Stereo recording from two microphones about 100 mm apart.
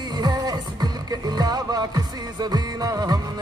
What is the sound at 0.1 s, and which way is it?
Music, 45° right (ahead or behind).